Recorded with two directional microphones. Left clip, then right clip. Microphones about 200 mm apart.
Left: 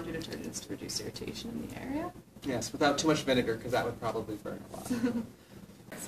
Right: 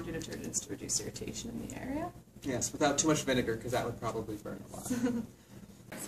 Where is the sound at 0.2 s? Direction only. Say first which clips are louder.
Even; 20° right (ahead or behind).